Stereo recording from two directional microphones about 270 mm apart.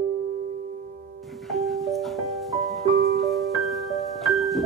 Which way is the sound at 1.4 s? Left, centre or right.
Centre.